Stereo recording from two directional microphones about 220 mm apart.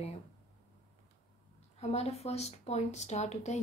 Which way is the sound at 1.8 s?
30° left (ahead or behind).